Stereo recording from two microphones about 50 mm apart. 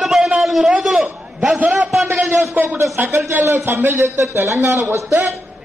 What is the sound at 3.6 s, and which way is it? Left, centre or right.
Speech, right.